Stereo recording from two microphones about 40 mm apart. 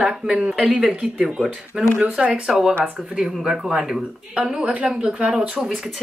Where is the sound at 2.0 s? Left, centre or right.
Right.